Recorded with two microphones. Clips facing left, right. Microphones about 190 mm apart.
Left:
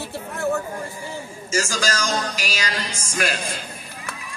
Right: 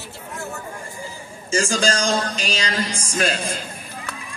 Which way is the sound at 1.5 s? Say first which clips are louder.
Right 4 dB; 30° right (ahead or behind).